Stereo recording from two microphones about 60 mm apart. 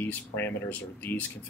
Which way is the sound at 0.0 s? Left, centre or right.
Left.